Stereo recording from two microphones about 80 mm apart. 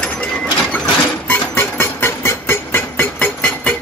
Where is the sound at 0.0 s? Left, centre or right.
Centre.